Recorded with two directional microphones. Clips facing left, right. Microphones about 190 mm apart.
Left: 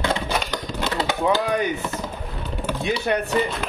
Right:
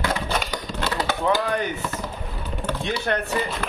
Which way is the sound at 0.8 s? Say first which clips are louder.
Left 1 dB; 20° left (ahead or behind).